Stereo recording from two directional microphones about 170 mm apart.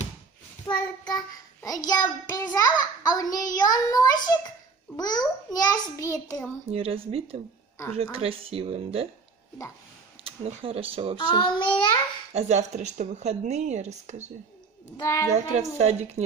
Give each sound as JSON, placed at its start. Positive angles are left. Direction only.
{"t": 0.7, "sound": "child singing", "side_deg": 20}
{"t": 4.3, "sound": "a child's voice", "side_deg": 15}
{"t": 6.7, "sound": "speech", "side_deg": -35}
{"t": 10.2, "sound": "speech", "side_deg": -35}
{"t": 11.1, "sound": "a child's voice", "side_deg": 25}
{"t": 12.3, "sound": "a woman's voice", "side_deg": -40}
{"t": 15.0, "sound": "a child's voice", "side_deg": 20}
{"t": 15.2, "sound": "speech", "side_deg": -40}